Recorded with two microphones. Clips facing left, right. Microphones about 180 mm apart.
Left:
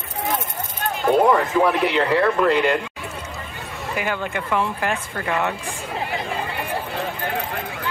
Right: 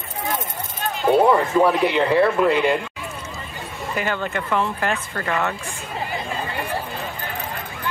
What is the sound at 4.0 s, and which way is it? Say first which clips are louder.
Speech: right 1 dB; 10° left (ahead or behind).